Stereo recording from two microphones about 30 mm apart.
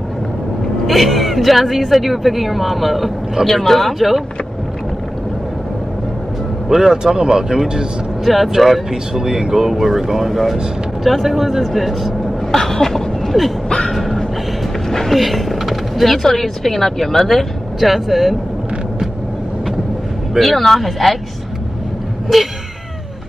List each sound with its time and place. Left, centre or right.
0.8 s speech: centre
6.7 s speech: centre
8.3 s speech: centre
12.4 s a sound: centre
13.7 s a sound: left
14.9 s music: centre
15.1 s speech: centre
17.7 s speech: centre
20.3 s speech: centre
22.3 s speech: centre